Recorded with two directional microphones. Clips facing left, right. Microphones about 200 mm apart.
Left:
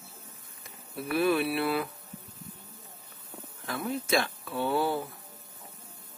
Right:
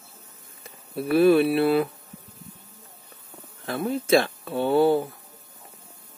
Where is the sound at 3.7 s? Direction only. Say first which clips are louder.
Right 8 dB; 30° right (ahead or behind).